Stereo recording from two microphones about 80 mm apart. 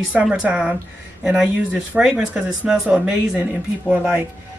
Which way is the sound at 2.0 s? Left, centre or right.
Centre.